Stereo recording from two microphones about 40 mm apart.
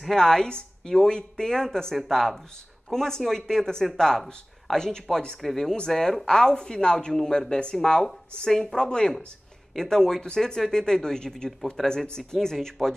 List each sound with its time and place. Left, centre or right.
0.1 s speech: centre
5.4 s speech: centre